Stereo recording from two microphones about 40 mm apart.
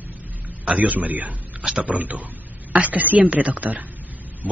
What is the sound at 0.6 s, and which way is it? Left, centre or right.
Speech, right.